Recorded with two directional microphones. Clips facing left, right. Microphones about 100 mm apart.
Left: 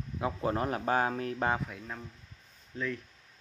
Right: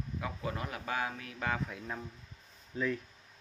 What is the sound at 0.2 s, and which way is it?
Speech, 40° left (ahead or behind).